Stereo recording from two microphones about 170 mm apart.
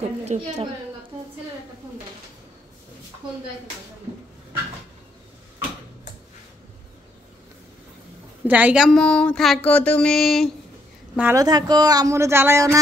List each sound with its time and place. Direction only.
0.2 s a woman's voice: 40° right (ahead or behind)
8.5 s a sound: 10° right (ahead or behind)
11.1 s a woman's voice: 10° right (ahead or behind)
11.4 s speech: 25° right (ahead or behind)